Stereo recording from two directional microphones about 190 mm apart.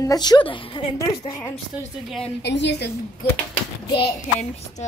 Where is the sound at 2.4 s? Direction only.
65° left (ahead or behind).